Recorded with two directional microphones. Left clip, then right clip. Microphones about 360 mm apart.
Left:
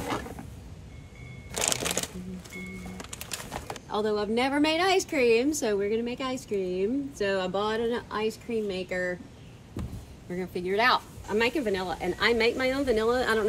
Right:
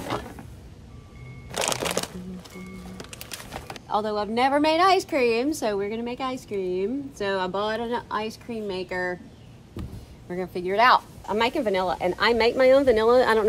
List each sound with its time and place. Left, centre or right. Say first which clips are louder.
1.5 s shuffling cards: right 3 dB; centre
3.0 s bird: right 1 dB; centre
3.9 s speech: right 2 dB; centre
9.8 s a sound: right 1 dB; centre
10.3 s speech: right 4 dB; centre